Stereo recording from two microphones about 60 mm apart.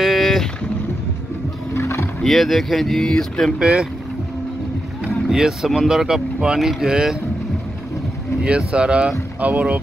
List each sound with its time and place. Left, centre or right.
0.0 s vehicle: centre
1.7 s music: left
2.2 s speech: centre
3.5 s speech: centre
5.0 s boat: centre
5.8 s speech: centre
8.5 s speech: centre